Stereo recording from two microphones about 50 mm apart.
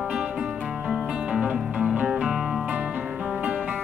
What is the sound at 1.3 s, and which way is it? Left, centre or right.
Music, centre.